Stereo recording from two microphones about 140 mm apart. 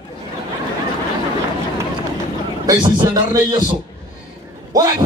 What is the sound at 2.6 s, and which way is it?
A man's voice, 30° right (ahead or behind).